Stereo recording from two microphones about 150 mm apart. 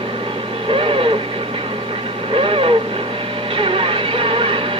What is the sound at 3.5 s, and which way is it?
Music, 35° right (ahead or behind).